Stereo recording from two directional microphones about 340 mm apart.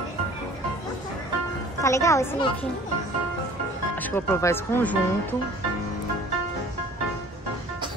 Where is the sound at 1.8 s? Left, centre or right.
Centre.